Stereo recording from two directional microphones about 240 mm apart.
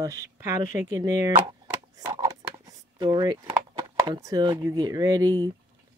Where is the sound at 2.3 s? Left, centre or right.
Centre.